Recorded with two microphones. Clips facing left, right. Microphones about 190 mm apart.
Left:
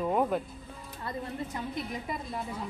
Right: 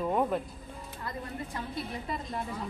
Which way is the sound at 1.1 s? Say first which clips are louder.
Left 3 dB; 20° left (ahead or behind).